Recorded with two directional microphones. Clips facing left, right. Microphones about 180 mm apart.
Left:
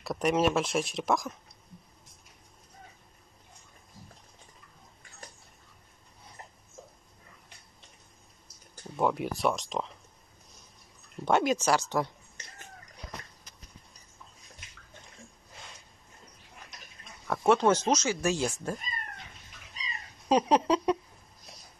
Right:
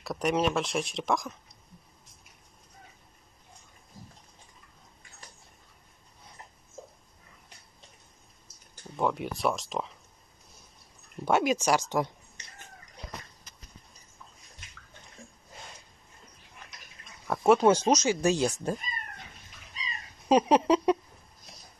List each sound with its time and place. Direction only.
0.0 s speech: centre (ahead or behind)
8.9 s speech: centre (ahead or behind)
11.2 s speech: 10° right (ahead or behind)
17.3 s speech: 5° right (ahead or behind)
20.2 s speech: 10° right (ahead or behind)